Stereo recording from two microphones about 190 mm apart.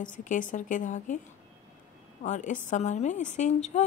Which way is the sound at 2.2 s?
40° left (ahead or behind).